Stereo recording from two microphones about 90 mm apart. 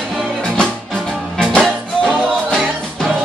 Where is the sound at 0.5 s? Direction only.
5° left (ahead or behind).